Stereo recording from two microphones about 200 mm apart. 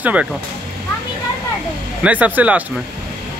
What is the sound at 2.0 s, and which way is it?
Speech, 5° right (ahead or behind).